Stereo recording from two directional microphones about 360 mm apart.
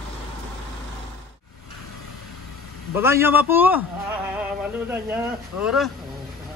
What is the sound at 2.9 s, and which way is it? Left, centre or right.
Speech, centre.